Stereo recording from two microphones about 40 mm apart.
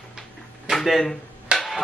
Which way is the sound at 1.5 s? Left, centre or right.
Right.